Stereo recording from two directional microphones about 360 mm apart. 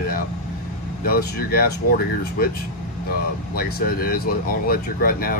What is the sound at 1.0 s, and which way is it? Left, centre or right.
Speech, left.